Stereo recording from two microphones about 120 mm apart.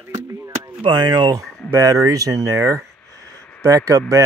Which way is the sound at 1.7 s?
25° right (ahead or behind).